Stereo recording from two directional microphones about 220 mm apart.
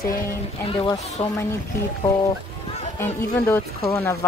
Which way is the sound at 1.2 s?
30° left (ahead or behind).